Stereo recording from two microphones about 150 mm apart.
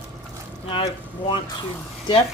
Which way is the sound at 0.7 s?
35° left (ahead or behind).